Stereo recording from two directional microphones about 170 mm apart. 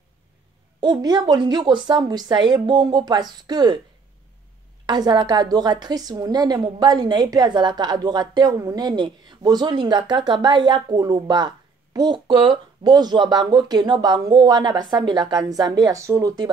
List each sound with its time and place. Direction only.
0.7 s a woman's voice: 25° right (ahead or behind)
4.8 s a woman's voice: 25° right (ahead or behind)